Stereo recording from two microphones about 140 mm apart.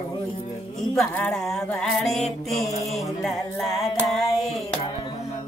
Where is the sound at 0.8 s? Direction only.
5° left (ahead or behind).